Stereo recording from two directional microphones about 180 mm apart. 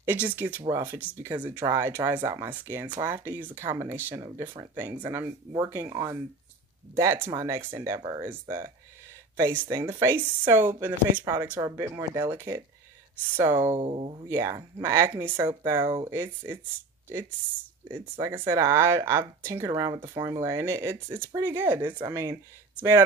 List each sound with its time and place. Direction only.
0.0 s speech: 10° right (ahead or behind)
13.7 s speech: 30° right (ahead or behind)
14.3 s speech: 15° right (ahead or behind)
17.8 s speech: 10° right (ahead or behind)